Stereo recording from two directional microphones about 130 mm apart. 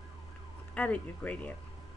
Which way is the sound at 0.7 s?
10° left (ahead or behind).